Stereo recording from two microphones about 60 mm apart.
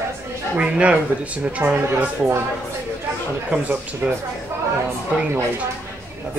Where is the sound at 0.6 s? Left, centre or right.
Centre.